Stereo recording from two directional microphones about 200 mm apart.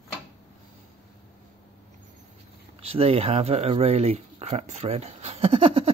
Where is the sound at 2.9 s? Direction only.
30° right (ahead or behind).